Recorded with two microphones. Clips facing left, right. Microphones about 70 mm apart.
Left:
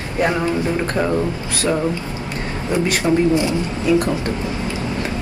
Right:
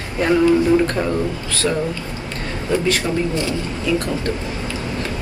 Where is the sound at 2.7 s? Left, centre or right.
Left.